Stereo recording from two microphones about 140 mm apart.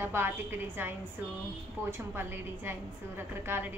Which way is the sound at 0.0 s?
15° right (ahead or behind).